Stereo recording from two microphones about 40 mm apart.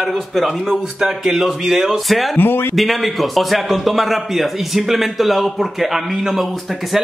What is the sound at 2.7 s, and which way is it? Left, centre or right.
A man's voice, centre.